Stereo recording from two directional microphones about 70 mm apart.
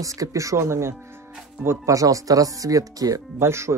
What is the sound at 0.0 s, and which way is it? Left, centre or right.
Speech, right.